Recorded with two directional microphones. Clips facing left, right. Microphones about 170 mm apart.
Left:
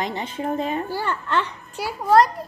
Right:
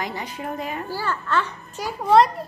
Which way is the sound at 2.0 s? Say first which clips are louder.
Even; centre (ahead or behind).